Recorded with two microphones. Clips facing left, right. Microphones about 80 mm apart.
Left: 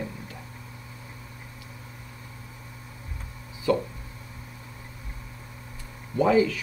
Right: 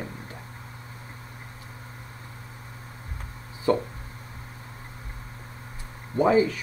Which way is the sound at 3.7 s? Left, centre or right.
Right.